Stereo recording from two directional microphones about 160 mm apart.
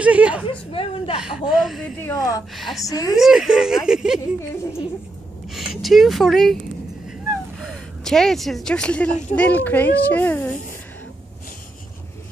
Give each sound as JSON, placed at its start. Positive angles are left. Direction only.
{"t": 0.0, "sound": "a sound", "side_deg": -10}
{"t": 0.5, "sound": "a sound", "side_deg": 35}
{"t": 1.2, "sound": "speech", "side_deg": -5}
{"t": 2.0, "sound": "a child's voice", "side_deg": 15}
{"t": 2.5, "sound": "speech", "side_deg": 0}
{"t": 2.8, "sound": "a woman's voice", "side_deg": 20}
{"t": 3.2, "sound": "speech", "side_deg": -5}
{"t": 5.5, "sound": "speech", "side_deg": 0}
{"t": 8.0, "sound": "a child's voice", "side_deg": 5}